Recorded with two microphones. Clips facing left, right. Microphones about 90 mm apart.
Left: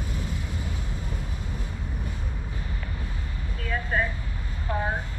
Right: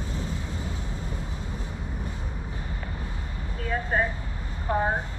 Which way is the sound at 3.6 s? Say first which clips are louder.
Right 1 dB; 30° right (ahead or behind).